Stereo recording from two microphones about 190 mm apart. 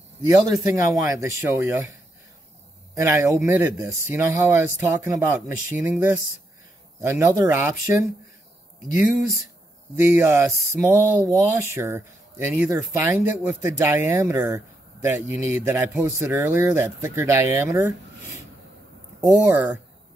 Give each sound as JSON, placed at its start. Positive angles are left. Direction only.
{"t": 0.4, "sound": "speech", "side_deg": -15}
{"t": 2.9, "sound": "speech", "side_deg": -15}
{"t": 19.4, "sound": "speech", "side_deg": -5}